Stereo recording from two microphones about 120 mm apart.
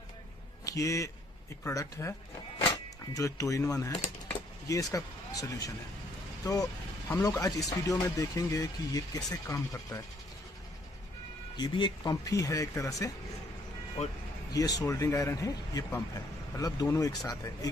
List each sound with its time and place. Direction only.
0.7 s speech: 25° left (ahead or behind)
11.5 s speech: 40° left (ahead or behind)
14.0 s speech: 65° left (ahead or behind)
14.5 s speech: 30° left (ahead or behind)